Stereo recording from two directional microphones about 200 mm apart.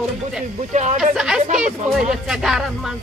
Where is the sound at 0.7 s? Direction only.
35° right (ahead or behind).